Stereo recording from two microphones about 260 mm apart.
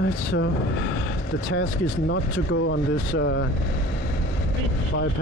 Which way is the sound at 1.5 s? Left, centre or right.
Left.